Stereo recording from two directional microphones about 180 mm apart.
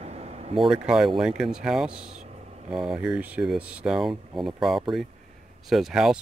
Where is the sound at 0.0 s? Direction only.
35° right (ahead or behind).